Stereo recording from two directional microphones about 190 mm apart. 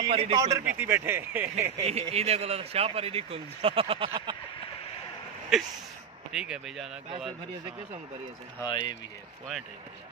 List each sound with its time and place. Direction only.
0.1 s a man's voice: 30° right (ahead or behind)
0.4 s speech: 15° right (ahead or behind)
1.9 s speech: 35° right (ahead or behind)
5.5 s speech: centre (ahead or behind)
8.5 s speech: 25° left (ahead or behind)